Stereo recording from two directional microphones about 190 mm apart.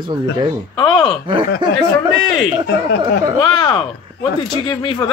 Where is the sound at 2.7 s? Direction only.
60° left (ahead or behind).